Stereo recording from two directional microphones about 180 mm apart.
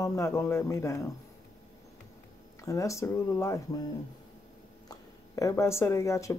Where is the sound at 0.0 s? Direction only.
15° left (ahead or behind).